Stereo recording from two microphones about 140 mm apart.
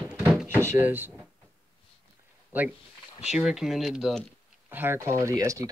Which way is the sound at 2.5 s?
15° right (ahead or behind).